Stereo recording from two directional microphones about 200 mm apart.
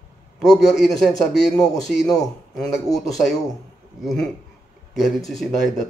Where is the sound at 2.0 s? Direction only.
20° left (ahead or behind).